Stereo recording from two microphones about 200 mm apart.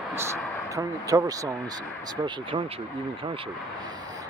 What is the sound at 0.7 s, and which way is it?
Speech, 15° right (ahead or behind).